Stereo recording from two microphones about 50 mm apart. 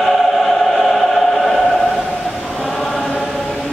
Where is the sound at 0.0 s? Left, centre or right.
Centre.